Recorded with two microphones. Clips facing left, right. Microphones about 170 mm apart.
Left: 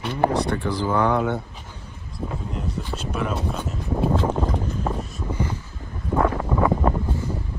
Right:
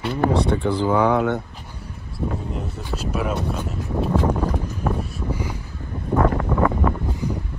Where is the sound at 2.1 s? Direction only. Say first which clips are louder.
Right 3 dB; 5° right (ahead or behind).